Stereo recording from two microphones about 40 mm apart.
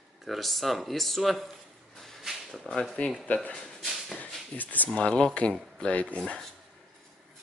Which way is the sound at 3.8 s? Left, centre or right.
Centre.